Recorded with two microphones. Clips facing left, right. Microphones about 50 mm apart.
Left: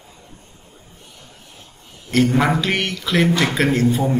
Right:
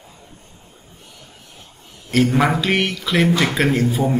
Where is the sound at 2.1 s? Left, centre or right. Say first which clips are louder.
Even; centre.